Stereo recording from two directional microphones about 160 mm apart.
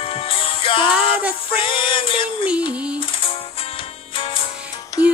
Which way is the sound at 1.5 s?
30° left (ahead or behind).